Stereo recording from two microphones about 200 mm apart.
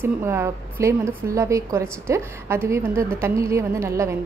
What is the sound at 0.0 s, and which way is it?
A woman's voice, 10° right (ahead or behind).